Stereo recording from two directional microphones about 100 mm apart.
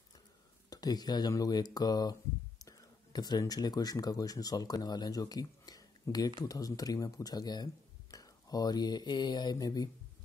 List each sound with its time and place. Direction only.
0.7 s speech: 40° left (ahead or behind)